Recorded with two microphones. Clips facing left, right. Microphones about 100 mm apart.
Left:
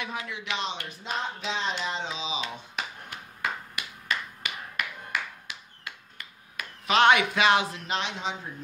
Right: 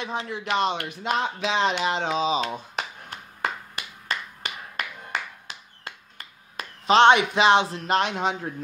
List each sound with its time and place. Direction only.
0.0 s speech: 30° right (ahead or behind)
0.4 s speech: 45° right (ahead or behind)
3.1 s finger snapping: 35° right (ahead or behind)
7.8 s speech: 50° right (ahead or behind)